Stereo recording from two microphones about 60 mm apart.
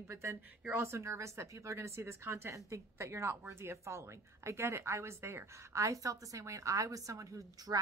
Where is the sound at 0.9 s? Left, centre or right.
Right.